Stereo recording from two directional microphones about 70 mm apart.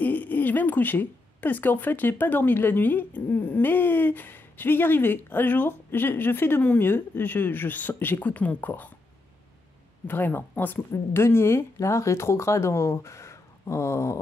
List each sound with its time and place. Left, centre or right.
0.0 s a woman's voice: left
10.0 s a woman's voice: left